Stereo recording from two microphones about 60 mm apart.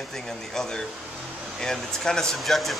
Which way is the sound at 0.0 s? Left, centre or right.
Centre.